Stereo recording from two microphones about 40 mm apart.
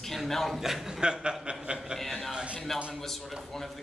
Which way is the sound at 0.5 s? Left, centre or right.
Centre.